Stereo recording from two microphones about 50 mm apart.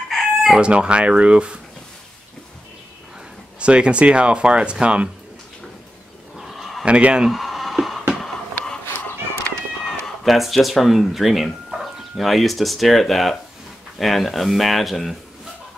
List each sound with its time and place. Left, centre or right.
0.1 s chicken: centre
0.6 s speech: right
3.5 s speech: right
6.3 s a sound: centre
6.8 s speech: right
7.2 s a sound: centre
9.8 s speech: centre